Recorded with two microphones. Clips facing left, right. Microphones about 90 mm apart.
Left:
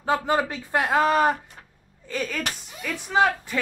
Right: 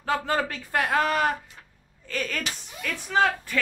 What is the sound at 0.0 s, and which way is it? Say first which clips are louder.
A man's voice: left 3 dB; 20° left (ahead or behind).